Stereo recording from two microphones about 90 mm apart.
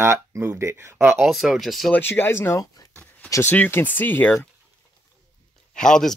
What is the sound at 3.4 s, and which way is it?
Speech, 15° left (ahead or behind).